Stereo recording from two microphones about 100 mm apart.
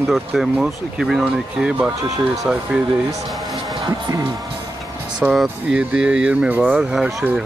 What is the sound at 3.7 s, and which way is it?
Speech, 35° right (ahead or behind).